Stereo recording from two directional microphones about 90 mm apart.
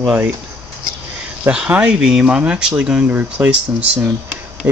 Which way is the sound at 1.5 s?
15° right (ahead or behind).